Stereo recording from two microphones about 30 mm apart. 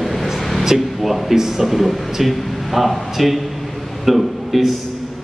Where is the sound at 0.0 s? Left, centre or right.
Centre.